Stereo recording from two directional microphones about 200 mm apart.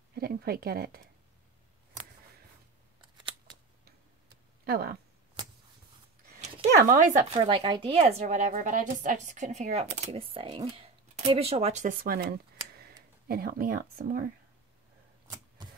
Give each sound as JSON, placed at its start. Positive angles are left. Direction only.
{"t": 0.1, "sound": "a woman's voice", "side_deg": -50}
{"t": 4.6, "sound": "a woman's voice", "side_deg": -50}
{"t": 6.8, "sound": "speech", "side_deg": -45}
{"t": 13.3, "sound": "a woman's voice", "side_deg": -45}